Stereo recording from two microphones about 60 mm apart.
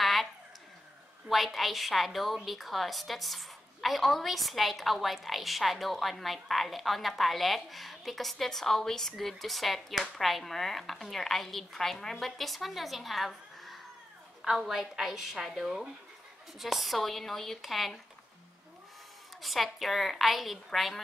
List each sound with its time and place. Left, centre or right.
0.0 s a sound: centre
1.3 s a woman's voice: centre
19.4 s a woman's voice: centre